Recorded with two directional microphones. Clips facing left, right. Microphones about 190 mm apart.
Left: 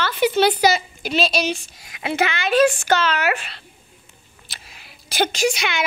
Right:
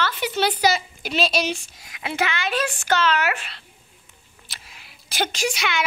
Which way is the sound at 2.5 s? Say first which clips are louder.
Left 7 dB; 40° left (ahead or behind).